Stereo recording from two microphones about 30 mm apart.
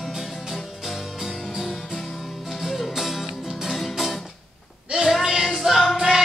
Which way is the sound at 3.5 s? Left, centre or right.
Centre.